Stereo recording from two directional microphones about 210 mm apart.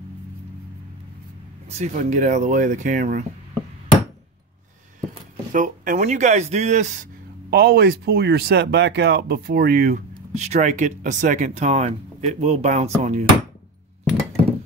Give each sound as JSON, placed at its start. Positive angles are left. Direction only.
{"t": 1.7, "sound": "speech", "side_deg": -35}
{"t": 5.5, "sound": "speech", "side_deg": -40}
{"t": 7.5, "sound": "speech", "side_deg": -45}